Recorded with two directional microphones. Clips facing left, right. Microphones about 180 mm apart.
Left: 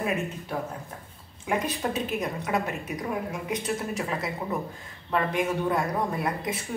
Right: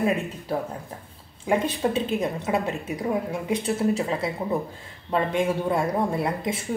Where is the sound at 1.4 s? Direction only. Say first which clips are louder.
Right 5 dB; 30° right (ahead or behind).